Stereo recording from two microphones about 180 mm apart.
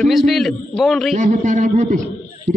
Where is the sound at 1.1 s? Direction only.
45° right (ahead or behind).